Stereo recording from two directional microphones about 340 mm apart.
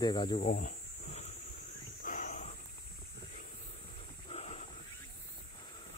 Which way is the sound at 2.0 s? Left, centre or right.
Left.